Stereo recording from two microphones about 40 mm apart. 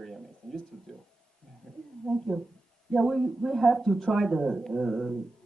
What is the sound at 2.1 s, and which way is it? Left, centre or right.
Speech, centre.